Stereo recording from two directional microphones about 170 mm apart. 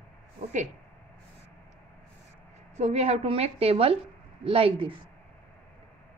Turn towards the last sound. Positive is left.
turn(degrees=-30)  # may be behind; listen again after turning